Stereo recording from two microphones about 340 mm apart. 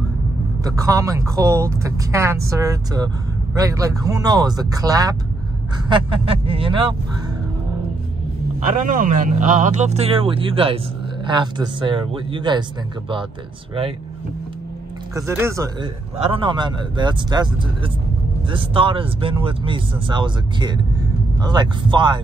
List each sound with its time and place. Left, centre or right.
0.7 s a man's voice: centre
8.6 s a man's voice: right
15.1 s a man's voice: centre